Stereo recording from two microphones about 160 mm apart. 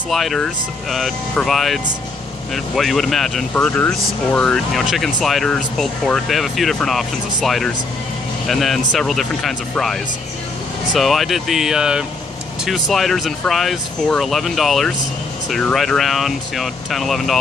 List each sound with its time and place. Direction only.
0.1 s speech: centre (ahead or behind)